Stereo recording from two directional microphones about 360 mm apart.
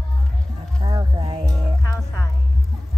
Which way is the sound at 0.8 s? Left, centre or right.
Centre.